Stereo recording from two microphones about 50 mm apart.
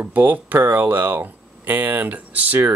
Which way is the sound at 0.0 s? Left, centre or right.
Right.